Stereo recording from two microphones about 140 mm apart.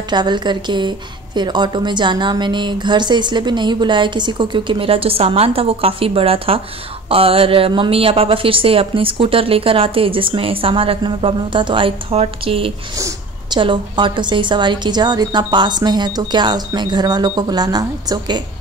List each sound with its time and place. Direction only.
0.1 s a woman's voice: 30° right (ahead or behind)
12.9 s a sound: 25° right (ahead or behind)
13.6 s a woman's voice: 35° right (ahead or behind)